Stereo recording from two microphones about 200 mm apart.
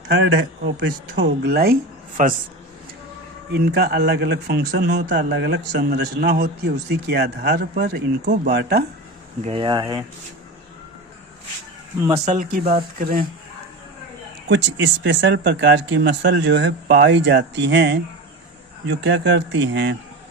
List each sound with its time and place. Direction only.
0.1 s speech: 60° right (ahead or behind)
3.5 s speech: 55° right (ahead or behind)
9.4 s speech: 25° right (ahead or behind)
12.1 s speech: 40° right (ahead or behind)
14.5 s speech: 65° right (ahead or behind)